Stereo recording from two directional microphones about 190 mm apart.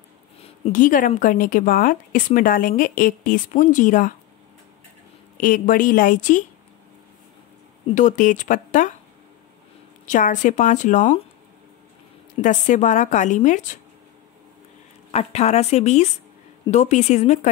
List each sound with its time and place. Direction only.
0.7 s speech: 45° left (ahead or behind)
5.4 s speech: 45° left (ahead or behind)
7.8 s a woman's voice: 40° left (ahead or behind)
10.0 s a woman's voice: 40° left (ahead or behind)
12.4 s a woman's voice: 40° left (ahead or behind)
15.0 s a woman's voice: 35° left (ahead or behind)